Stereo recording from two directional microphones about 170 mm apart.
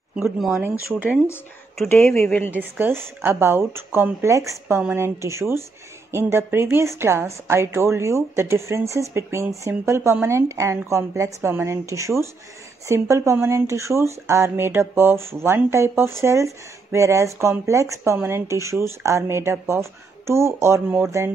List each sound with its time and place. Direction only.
0.1 s speech: 5° right (ahead or behind)
1.9 s speech: 15° left (ahead or behind)
2.5 s speech: 10° right (ahead or behind)